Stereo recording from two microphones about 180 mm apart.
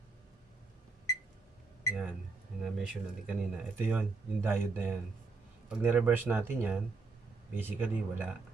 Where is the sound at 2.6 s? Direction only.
Centre (ahead or behind).